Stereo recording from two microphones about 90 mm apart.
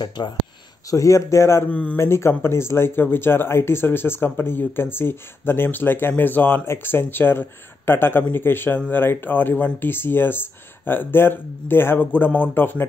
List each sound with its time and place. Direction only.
0.2 s speech: 55° left (ahead or behind)
0.8 s speech: 35° left (ahead or behind)
1.7 s speech: 15° left (ahead or behind)
2.0 s speech: 30° left (ahead or behind)